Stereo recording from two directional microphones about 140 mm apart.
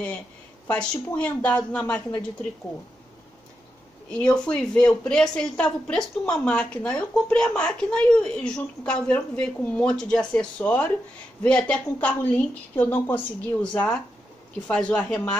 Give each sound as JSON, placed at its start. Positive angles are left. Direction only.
{"t": 0.7, "sound": "speech", "side_deg": 10}
{"t": 4.1, "sound": "speech", "side_deg": 5}